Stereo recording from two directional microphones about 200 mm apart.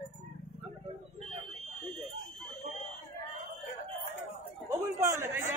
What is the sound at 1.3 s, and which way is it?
Fire alarm, 30° right (ahead or behind).